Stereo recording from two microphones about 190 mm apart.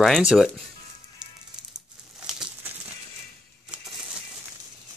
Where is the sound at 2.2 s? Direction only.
5° right (ahead or behind).